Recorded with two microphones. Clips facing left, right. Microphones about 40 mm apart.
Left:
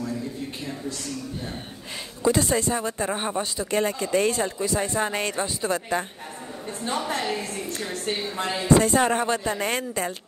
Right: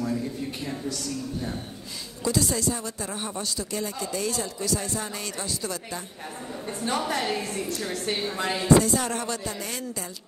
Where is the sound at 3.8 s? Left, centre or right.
Left.